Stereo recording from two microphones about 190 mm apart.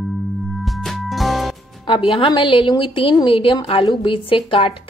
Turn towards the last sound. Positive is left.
turn(degrees=25)  # may be behind; listen again after turning